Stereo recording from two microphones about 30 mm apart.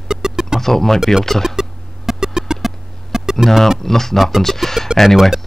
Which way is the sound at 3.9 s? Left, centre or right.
Centre.